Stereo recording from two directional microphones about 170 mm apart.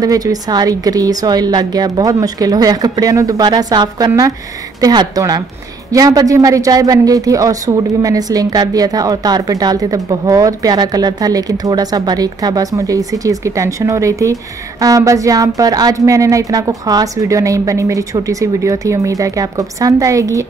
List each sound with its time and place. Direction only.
0.0 s speech: 20° right (ahead or behind)